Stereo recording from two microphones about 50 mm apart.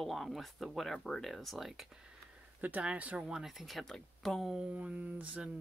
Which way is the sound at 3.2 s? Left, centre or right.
Centre.